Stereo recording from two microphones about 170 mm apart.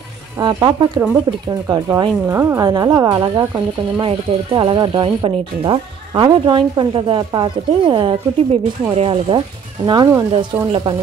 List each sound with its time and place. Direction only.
0.4 s a woman's voice: 25° right (ahead or behind)